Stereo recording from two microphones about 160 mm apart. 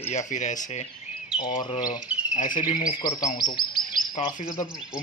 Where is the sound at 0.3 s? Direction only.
50° left (ahead or behind).